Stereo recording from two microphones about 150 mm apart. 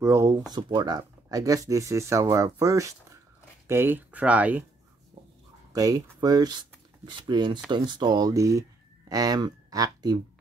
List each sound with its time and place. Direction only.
0.0 s speech: 20° right (ahead or behind)
0.5 s speech: 30° right (ahead or behind); by 4.6 s 10° right (ahead or behind)
5.7 s speech: 25° right (ahead or behind)